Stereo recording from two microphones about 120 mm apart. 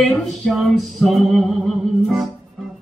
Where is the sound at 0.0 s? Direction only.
Centre (ahead or behind).